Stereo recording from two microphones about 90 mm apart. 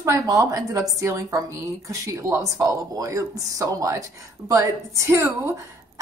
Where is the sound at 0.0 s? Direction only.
35° right (ahead or behind).